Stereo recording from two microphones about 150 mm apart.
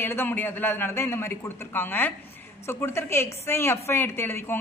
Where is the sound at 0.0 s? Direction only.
15° left (ahead or behind).